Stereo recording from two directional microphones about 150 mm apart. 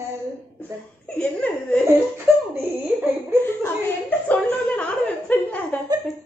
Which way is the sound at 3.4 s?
15° left (ahead or behind).